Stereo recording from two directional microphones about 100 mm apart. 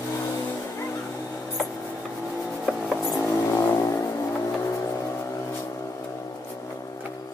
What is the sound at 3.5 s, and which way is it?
Vehicle, 30° left (ahead or behind).